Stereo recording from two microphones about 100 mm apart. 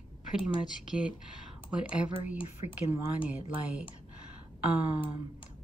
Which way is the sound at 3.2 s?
15° right (ahead or behind).